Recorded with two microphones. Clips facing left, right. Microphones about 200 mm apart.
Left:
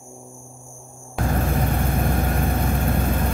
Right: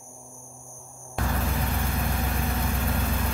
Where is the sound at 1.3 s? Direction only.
50° left (ahead or behind).